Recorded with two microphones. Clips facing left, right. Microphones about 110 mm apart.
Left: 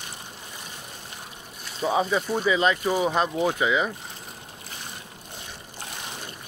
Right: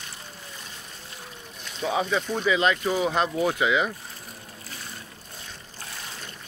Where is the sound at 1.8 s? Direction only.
5° left (ahead or behind).